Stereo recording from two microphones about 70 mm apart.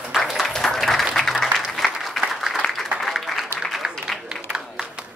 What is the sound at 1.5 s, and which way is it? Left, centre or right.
Applause, centre.